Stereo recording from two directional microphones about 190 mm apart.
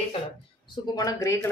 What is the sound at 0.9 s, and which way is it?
Speech, 15° left (ahead or behind).